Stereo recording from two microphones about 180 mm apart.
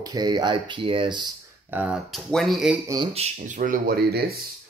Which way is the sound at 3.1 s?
40° right (ahead or behind).